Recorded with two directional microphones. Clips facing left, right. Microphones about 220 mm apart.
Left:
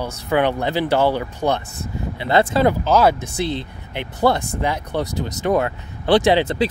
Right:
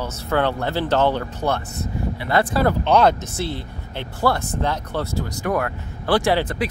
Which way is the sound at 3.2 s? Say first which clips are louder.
Left 4 dB; 15° left (ahead or behind).